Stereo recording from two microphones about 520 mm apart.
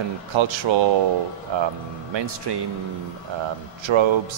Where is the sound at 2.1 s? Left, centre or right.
Right.